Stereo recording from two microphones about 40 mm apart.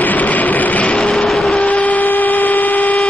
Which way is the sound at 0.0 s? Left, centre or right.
Left.